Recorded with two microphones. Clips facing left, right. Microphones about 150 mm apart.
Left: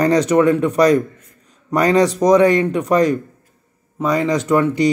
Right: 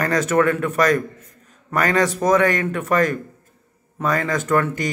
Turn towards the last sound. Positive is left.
turn(degrees=15)  # may be behind; listen again after turning